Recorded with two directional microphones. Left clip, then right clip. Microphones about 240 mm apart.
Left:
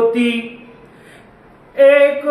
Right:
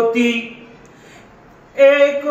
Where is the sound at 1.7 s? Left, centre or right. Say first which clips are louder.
Left 1 dB; centre.